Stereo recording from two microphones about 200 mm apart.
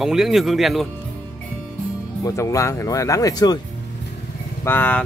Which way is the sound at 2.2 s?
15° left (ahead or behind).